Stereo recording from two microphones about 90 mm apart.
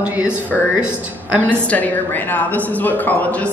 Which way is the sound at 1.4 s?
15° left (ahead or behind).